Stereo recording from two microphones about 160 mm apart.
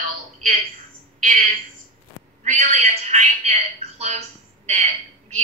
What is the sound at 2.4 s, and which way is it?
A woman's voice, 45° right (ahead or behind).